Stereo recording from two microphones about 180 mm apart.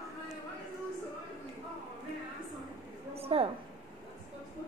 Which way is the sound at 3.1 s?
35° right (ahead or behind).